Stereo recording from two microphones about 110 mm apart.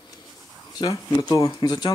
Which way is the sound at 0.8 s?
30° left (ahead or behind).